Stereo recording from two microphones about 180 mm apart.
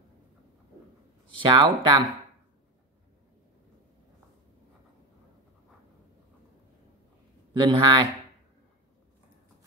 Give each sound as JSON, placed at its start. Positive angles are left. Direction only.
{"t": 1.4, "sound": "speech", "side_deg": -25}
{"t": 7.5, "sound": "speech", "side_deg": -25}